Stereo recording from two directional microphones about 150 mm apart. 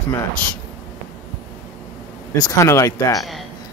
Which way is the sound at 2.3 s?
25° left (ahead or behind).